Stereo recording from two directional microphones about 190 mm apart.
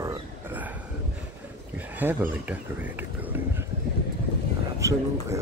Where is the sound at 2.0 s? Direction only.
10° right (ahead or behind).